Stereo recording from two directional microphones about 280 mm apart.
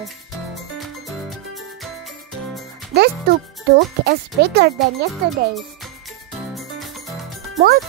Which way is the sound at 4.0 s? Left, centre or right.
Right.